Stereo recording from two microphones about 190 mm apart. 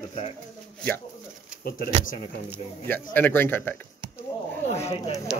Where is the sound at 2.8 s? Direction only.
10° left (ahead or behind).